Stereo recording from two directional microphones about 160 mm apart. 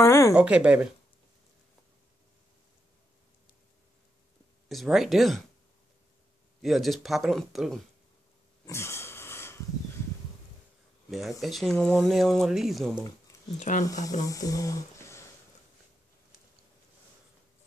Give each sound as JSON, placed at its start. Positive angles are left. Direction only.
{"t": 0.0, "sound": "a sound", "side_deg": 15}
{"t": 0.4, "sound": "speech", "side_deg": -5}
{"t": 4.6, "sound": "speech", "side_deg": 0}
{"t": 6.6, "sound": "speech", "side_deg": 0}
{"t": 8.6, "sound": "wheeze", "side_deg": 15}
{"t": 11.1, "sound": "speech", "side_deg": 0}
{"t": 13.6, "sound": "speech", "side_deg": 50}
{"t": 13.8, "sound": "speech", "side_deg": 20}